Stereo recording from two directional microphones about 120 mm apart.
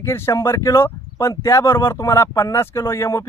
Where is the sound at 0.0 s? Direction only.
20° left (ahead or behind).